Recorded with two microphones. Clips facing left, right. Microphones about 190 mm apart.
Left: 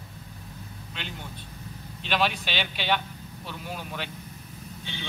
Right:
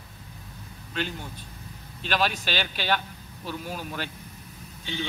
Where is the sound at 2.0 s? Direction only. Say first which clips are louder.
Even; 40° right (ahead or behind).